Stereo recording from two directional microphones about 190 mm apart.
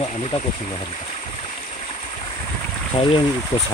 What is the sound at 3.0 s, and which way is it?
Speech, 30° left (ahead or behind).